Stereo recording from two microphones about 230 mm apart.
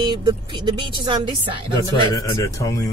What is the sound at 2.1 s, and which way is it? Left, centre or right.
Speech, centre.